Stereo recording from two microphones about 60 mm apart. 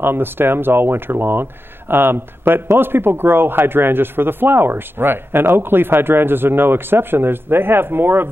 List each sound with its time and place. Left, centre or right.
0.0 s speech: right